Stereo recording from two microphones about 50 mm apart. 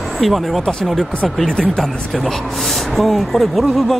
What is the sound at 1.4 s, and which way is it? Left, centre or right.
Speech, centre.